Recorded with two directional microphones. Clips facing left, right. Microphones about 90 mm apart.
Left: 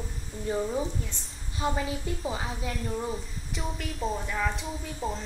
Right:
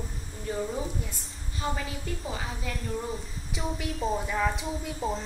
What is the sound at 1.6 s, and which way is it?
Speech, 20° left (ahead or behind).